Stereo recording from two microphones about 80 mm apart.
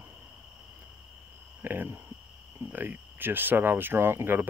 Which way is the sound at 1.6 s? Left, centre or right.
Right.